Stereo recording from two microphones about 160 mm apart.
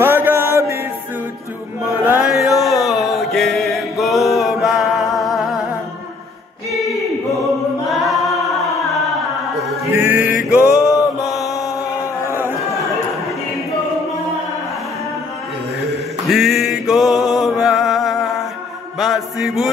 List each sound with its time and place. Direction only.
0.0 s chant: 15° right (ahead or behind)
1.9 s music: 15° right (ahead or behind)
2.2 s mantra: centre (ahead or behind)
6.7 s a sound: centre (ahead or behind)
7.9 s singing: centre (ahead or behind)
9.9 s music: 15° right (ahead or behind)
11.4 s chant: 20° left (ahead or behind)
12.3 s chatter: 15° right (ahead or behind)
16.3 s a sound: centre (ahead or behind)
17.3 s music: centre (ahead or behind)
18.9 s mantra: centre (ahead or behind)